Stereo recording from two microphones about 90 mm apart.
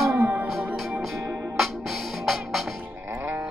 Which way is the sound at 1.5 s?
Centre (ahead or behind).